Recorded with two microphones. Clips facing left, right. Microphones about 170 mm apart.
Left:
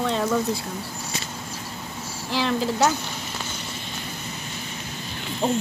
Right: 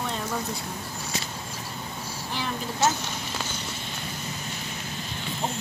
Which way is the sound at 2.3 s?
90° left.